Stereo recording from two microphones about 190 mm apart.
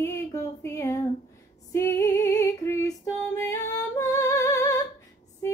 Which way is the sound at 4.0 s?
15° left (ahead or behind).